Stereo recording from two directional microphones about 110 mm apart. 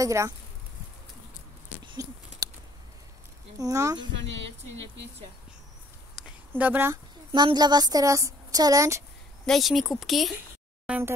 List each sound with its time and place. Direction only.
0.0 s speech: 25° right (ahead or behind)
2.4 s a sound: 35° right (ahead or behind)
3.5 s a woman's voice: 30° right (ahead or behind)
6.5 s speech: 15° right (ahead or behind)
7.3 s a woman's voice: 40° right (ahead or behind)
9.5 s speech: centre (ahead or behind)
10.9 s speech: 10° right (ahead or behind)